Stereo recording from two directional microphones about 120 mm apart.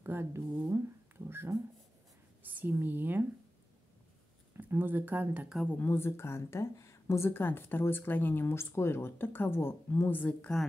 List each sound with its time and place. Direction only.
0.0 s speech: 20° right (ahead or behind)
4.6 s speech: 15° right (ahead or behind)
5.7 s a woman's voice: 15° left (ahead or behind)